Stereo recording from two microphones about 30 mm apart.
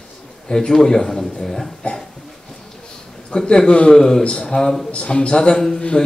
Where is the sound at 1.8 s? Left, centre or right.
Left.